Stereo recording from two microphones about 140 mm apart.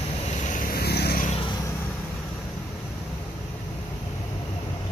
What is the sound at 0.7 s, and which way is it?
Vehicle, 90° left.